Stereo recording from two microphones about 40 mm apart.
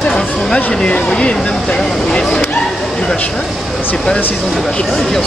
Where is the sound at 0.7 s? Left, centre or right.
Centre.